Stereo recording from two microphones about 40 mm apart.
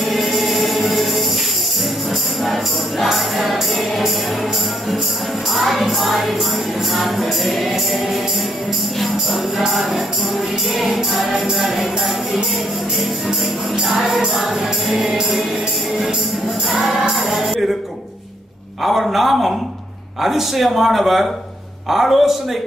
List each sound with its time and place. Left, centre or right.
0.1 s music: centre
2.4 s music: centre
5.6 s music: centre
9.7 s music: centre
13.8 s music: centre
15.0 s music: centre
17.3 s music: centre
18.9 s music: centre